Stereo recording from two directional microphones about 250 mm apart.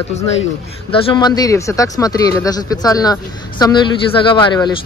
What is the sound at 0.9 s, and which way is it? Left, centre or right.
Speech, centre.